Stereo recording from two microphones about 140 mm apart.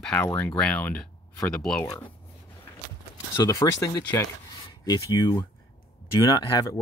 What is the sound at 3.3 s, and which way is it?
Speech, 25° left (ahead or behind).